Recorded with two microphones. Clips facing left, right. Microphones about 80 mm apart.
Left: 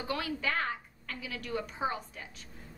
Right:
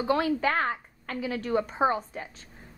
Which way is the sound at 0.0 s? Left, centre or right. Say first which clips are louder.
Right 9 dB; right.